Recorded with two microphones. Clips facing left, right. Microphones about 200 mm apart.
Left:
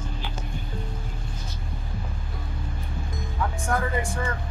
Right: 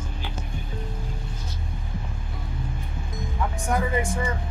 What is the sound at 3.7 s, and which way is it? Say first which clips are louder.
Speech: right 3 dB; 20° right (ahead or behind).